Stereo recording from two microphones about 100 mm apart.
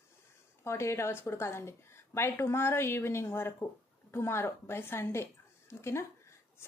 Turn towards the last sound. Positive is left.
turn(degrees=25)  # may be behind; listen again after turning